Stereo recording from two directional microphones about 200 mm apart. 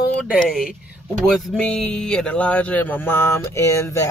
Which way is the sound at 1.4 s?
5° left (ahead or behind).